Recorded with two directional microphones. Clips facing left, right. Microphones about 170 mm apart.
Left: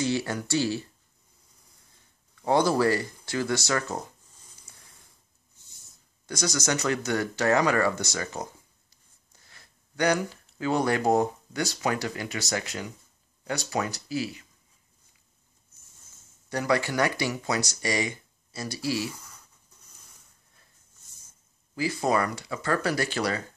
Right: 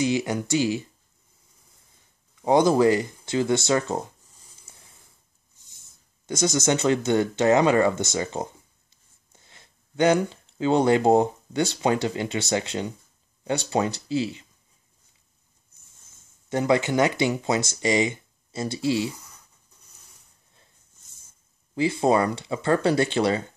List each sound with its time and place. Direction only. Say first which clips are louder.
0.0 s speech: right 4 dB; 15° right (ahead or behind)
2.4 s speech: right 4 dB; 20° right (ahead or behind)
4.7 s a sound: right 4 dB; 25° right (ahead or behind)
6.2 s speech: right 6 dB; 25° right (ahead or behind)
16.4 s speech: right 4 dB; 20° right (ahead or behind)
21.7 s speech: right 5 dB; 25° right (ahead or behind)